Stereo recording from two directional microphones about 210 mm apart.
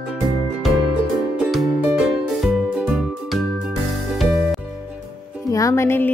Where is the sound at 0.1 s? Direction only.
Centre (ahead or behind).